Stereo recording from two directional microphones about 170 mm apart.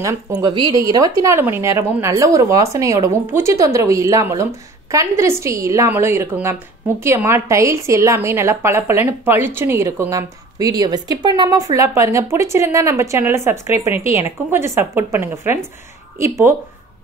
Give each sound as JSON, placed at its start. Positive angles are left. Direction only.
{"t": 0.0, "sound": "a woman's voice", "side_deg": -20}